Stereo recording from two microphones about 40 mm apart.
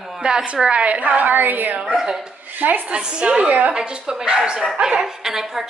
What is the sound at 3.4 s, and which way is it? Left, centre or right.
Speech, right.